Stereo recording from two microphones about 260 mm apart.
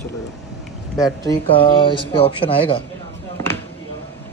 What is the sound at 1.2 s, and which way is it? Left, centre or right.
Speech, centre.